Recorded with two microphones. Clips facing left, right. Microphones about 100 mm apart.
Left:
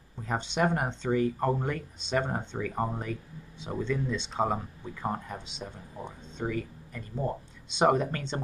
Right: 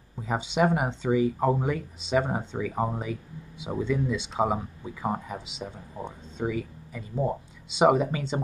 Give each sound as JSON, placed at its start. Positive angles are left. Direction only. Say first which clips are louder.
{"t": 0.2, "sound": "speech", "louder": "right 3 dB", "side_deg": -5}